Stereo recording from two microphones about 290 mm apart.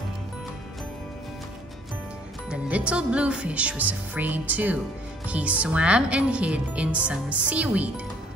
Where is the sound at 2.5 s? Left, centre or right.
Centre.